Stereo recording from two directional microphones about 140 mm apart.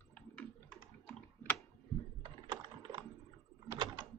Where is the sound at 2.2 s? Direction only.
30° right (ahead or behind).